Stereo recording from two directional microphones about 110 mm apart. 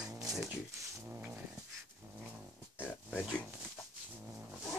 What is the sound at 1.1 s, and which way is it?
Dog, 20° right (ahead or behind).